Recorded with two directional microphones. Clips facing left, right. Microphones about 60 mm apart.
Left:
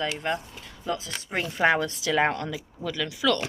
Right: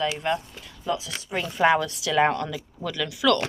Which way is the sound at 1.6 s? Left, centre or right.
Left.